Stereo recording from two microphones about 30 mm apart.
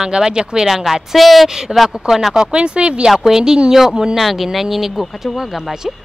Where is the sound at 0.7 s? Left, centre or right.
Centre.